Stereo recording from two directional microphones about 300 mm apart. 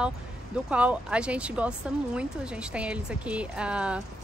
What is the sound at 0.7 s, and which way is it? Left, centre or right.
Speech, centre.